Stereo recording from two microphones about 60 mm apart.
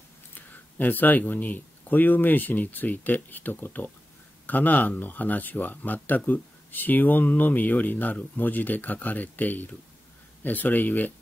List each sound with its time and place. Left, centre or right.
0.3 s speech: left